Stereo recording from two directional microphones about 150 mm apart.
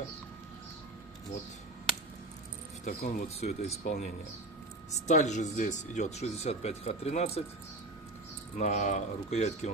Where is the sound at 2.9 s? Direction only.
75° left (ahead or behind).